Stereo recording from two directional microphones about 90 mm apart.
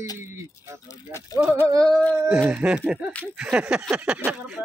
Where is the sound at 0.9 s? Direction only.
35° left (ahead or behind).